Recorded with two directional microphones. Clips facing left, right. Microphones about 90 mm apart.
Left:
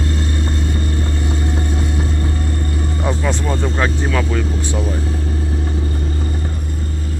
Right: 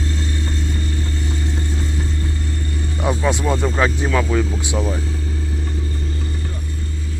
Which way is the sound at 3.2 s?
15° right (ahead or behind).